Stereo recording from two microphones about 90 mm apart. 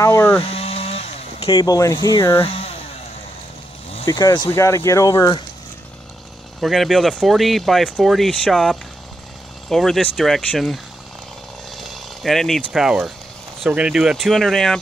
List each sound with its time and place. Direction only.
0.0 s speech: 30° left (ahead or behind)
0.4 s sheep: 90° left
1.6 s speech: 40° left (ahead or behind)
2.0 s speech: 55° left (ahead or behind)
4.1 s speech: 45° left (ahead or behind)
4.5 s speech: 35° left (ahead or behind)
6.6 s speech: centre (ahead or behind)
14.1 s speech: centre (ahead or behind)